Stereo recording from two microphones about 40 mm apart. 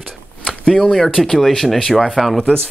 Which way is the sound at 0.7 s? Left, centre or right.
Centre.